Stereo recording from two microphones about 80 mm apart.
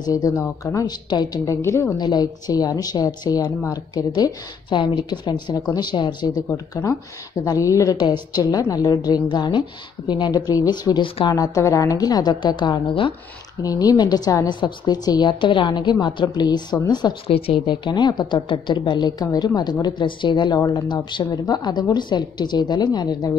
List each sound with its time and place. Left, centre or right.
0.0 s a woman's voice: left
0.8 s a woman's voice: left
2.0 s a woman's voice: left
6.3 s a woman's voice: left
13.6 s a woman's voice: left
14.5 s a woman's voice: left
17.6 s a woman's voice: left
21.2 s a woman's voice: left